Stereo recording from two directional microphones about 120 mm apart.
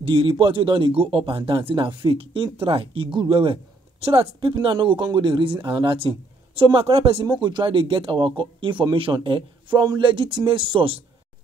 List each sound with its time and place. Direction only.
0.0 s speech: 45° right (ahead or behind)